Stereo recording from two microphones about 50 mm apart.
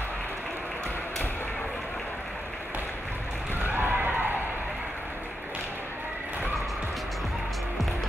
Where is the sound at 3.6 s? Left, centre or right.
Right.